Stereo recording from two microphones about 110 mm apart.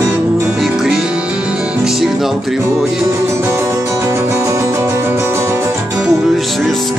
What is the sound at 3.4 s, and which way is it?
Music, 25° right (ahead or behind).